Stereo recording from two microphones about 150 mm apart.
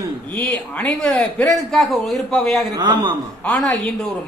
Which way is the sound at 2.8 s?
30° right (ahead or behind).